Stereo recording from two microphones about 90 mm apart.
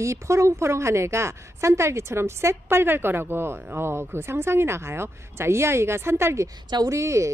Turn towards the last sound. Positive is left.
turn(degrees=-35)  # may be behind; listen again after turning